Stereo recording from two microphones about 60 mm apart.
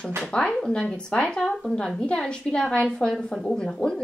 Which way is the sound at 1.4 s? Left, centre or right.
Centre.